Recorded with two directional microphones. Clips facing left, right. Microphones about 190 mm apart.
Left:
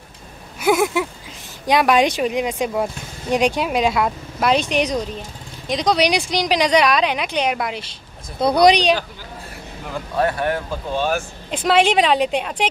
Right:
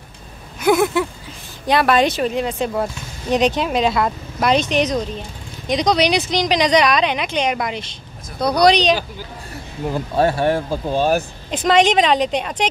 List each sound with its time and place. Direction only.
0.6 s a sound: 10° left (ahead or behind)
1.7 s speech: 15° left (ahead or behind)
8.4 s speech: 25° left (ahead or behind)
9.8 s speech: 30° right (ahead or behind)
11.6 s speech: 5° left (ahead or behind)